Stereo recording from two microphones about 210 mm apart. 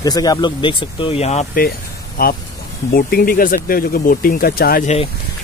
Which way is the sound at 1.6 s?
45° left (ahead or behind).